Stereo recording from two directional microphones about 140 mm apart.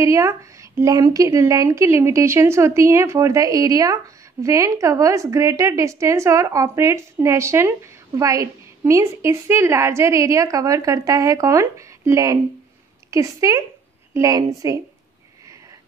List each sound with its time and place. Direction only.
0.0 s speech: 20° right (ahead or behind)